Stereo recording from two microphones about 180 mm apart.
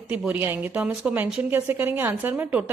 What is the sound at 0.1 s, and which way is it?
A woman's voice, 10° right (ahead or behind).